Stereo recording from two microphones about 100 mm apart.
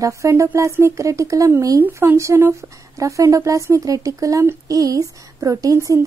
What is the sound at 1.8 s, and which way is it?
Speech, 25° right (ahead or behind).